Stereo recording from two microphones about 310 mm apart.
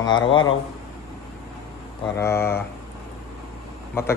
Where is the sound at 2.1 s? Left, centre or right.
Centre.